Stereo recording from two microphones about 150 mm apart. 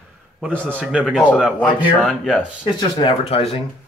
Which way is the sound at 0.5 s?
10° left (ahead or behind).